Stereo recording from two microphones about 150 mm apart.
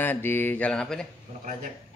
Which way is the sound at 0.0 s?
15° left (ahead or behind).